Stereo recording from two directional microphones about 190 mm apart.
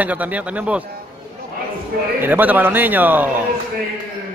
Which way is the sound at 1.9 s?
55° right (ahead or behind).